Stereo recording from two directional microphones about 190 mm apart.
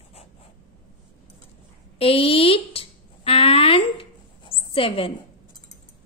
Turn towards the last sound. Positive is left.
turn(degrees=30)  # may be behind; listen again after turning